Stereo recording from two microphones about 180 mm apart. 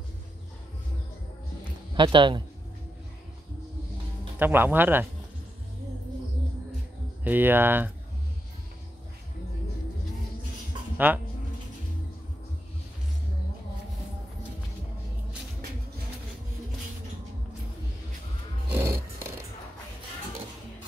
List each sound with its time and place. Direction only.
1.6 s a sound: 25° right (ahead or behind)
4.4 s speech: 10° right (ahead or behind)
7.2 s speech: 10° right (ahead or behind)
11.1 s speech: 10° right (ahead or behind)
18.7 s music: 15° right (ahead or behind)